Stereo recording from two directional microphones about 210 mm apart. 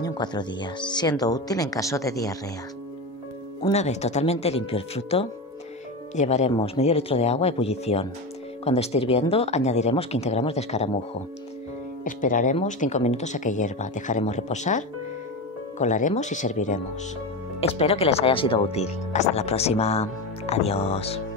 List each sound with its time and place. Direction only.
0.0 s speech: 20° left (ahead or behind)
3.7 s speech: 30° left (ahead or behind)
12.0 s speech: 40° left (ahead or behind)